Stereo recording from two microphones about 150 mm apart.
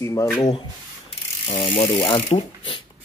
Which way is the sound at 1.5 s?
35° left (ahead or behind).